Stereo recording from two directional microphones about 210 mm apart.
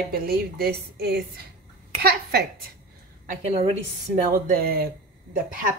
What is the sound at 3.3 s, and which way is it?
A woman's voice, 30° right (ahead or behind).